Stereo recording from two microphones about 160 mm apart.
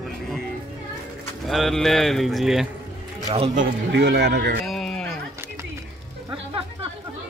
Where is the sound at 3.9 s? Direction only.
90° right.